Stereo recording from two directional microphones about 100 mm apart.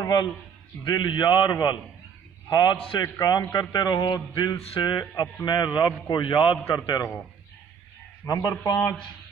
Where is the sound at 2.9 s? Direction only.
35° left (ahead or behind); by 6.6 s 55° left (ahead or behind).